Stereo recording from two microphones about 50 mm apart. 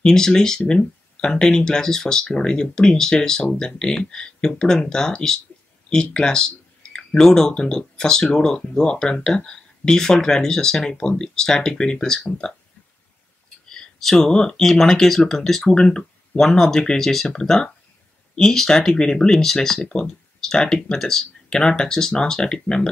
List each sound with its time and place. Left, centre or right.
0.0 s speech: centre
14.1 s speech: centre